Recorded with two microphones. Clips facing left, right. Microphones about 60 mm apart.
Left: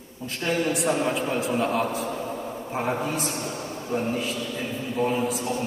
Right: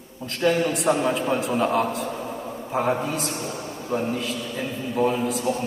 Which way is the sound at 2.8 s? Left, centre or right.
Right.